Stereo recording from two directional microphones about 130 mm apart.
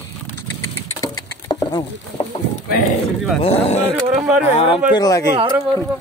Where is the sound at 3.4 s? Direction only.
50° left (ahead or behind).